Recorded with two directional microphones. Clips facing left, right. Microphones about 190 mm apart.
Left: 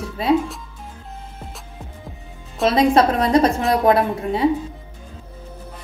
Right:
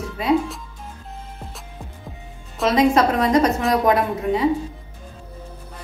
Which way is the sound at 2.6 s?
30° left (ahead or behind).